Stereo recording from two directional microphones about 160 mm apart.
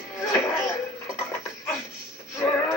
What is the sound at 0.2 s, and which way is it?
Music, 20° left (ahead or behind).